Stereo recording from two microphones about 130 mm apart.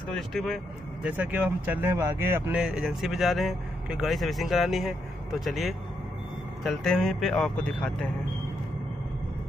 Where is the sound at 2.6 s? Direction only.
5° right (ahead or behind).